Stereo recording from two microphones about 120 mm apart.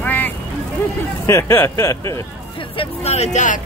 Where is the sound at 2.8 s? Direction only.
60° left (ahead or behind); by 3.6 s 85° left.